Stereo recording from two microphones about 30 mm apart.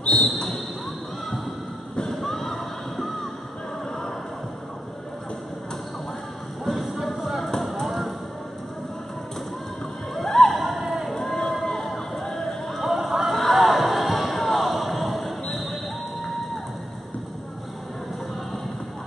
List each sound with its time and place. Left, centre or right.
0.0 s basketball bounce: left
2.0 s music: left
2.3 s music: centre
6.6 s music: centre
7.8 s basketball bounce: centre
10.2 s music: centre
10.6 s a sound: centre
11.6 s a sound: centre
12.4 s run: centre
12.8 s run: centre
13.4 s basketball bounce: centre